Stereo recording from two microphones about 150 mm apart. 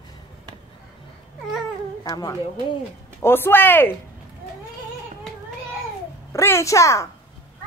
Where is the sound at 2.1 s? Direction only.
25° left (ahead or behind).